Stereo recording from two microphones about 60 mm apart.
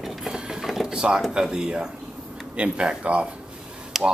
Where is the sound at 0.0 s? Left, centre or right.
Centre.